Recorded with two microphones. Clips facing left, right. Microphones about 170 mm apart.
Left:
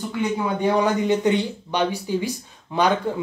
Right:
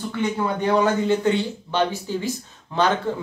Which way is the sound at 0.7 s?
15° left (ahead or behind).